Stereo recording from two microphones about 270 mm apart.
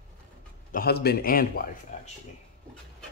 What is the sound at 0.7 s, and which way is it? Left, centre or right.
A man's voice, left.